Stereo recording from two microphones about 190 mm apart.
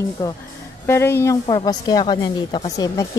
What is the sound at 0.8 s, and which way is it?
A woman's voice, 15° left (ahead or behind).